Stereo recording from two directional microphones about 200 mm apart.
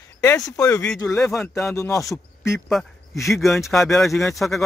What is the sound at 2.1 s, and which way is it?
Speech, 15° left (ahead or behind).